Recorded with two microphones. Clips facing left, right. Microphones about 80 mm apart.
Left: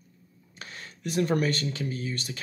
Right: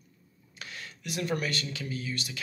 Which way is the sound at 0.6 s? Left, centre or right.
Left.